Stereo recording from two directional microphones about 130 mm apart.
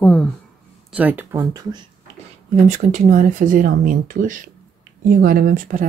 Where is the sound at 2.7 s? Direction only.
70° right (ahead or behind).